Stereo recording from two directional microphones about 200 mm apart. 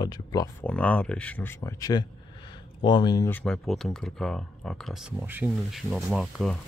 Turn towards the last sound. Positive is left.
turn(degrees=0)  # may be behind; listen again after turning